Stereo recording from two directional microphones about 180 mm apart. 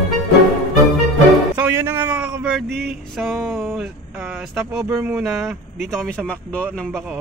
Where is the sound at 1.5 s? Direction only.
10° right (ahead or behind).